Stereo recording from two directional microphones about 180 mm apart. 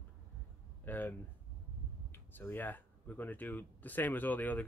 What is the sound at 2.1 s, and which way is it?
Speech, 10° left (ahead or behind).